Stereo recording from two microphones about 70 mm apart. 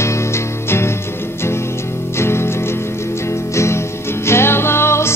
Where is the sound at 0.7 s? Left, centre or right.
Left.